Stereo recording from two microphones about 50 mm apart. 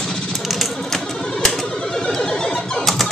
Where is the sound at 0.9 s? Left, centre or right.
Centre.